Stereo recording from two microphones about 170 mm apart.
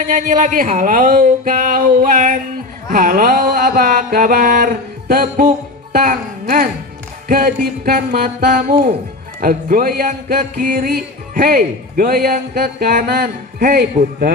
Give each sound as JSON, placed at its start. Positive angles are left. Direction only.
{"t": 0.0, "sound": "speech", "side_deg": -50}
{"t": 2.9, "sound": "music", "side_deg": -55}